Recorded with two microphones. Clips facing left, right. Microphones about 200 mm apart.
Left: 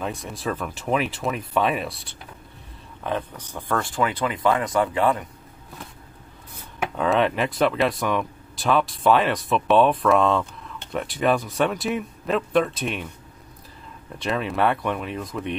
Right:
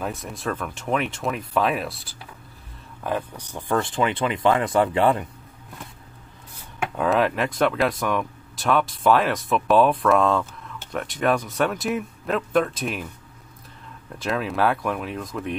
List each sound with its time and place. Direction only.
0.0 s speech: centre (ahead or behind); by 5.2 s 30° right (ahead or behind)
7.0 s speech: centre (ahead or behind)
14.1 s speech: centre (ahead or behind)